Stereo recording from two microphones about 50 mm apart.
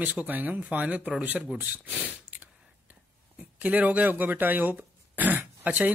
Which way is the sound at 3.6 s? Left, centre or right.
Right.